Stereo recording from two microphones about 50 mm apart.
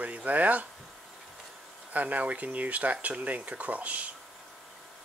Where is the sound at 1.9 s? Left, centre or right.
Right.